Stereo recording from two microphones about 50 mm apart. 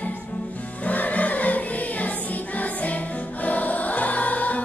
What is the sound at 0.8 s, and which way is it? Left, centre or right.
Music, left.